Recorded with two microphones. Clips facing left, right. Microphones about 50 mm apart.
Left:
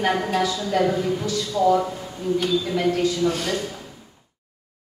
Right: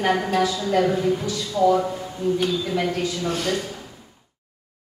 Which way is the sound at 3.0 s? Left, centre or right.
Right.